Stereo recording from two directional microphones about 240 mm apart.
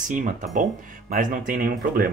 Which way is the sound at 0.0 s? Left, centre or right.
Right.